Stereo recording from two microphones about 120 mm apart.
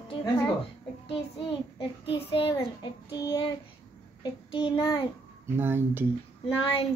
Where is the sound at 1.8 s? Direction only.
45° left (ahead or behind).